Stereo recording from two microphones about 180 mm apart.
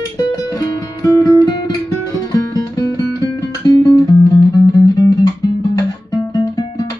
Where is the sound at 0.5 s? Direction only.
20° left (ahead or behind).